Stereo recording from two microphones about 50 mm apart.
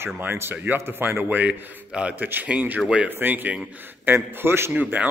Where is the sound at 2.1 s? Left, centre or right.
Right.